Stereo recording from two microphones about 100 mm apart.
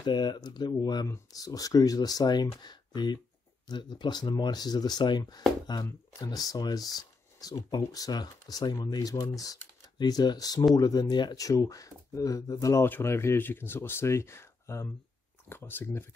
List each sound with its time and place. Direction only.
0.0 s speech: 50° left (ahead or behind)
1.0 s speech: 35° left (ahead or behind)
11.4 s speech: 35° left (ahead or behind)
12.8 s speech: 25° left (ahead or behind)